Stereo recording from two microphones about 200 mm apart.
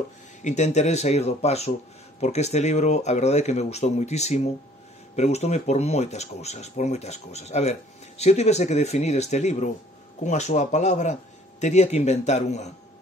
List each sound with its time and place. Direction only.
0.4 s speech: 35° left (ahead or behind)